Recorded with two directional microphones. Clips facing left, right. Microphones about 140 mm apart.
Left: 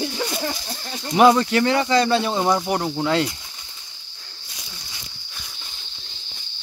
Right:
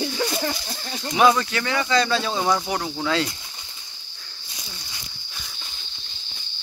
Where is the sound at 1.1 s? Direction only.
20° left (ahead or behind).